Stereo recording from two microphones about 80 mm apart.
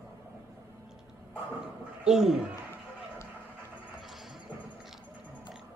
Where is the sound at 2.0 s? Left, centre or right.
Centre.